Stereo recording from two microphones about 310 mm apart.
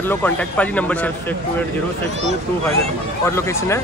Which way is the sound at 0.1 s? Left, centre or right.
Centre.